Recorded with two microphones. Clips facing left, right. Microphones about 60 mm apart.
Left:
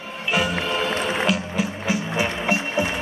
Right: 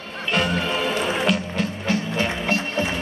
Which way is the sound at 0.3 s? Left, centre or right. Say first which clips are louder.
Even; centre.